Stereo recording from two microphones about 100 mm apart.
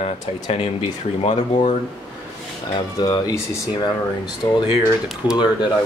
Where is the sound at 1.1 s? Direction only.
90° left.